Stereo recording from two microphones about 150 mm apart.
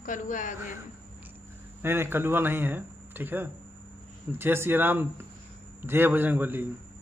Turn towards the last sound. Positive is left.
turn(degrees=-15)  # may be behind; listen again after turning